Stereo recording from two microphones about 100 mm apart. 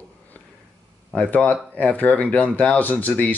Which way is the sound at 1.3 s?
15° left (ahead or behind).